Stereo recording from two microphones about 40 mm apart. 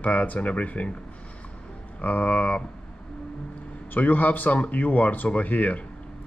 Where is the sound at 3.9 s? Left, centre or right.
Left.